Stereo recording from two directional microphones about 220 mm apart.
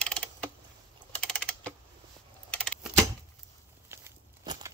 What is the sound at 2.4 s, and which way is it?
Keys jangling, 5° left (ahead or behind).